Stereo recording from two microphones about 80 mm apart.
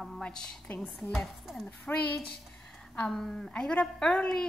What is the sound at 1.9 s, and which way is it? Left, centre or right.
Speech, left.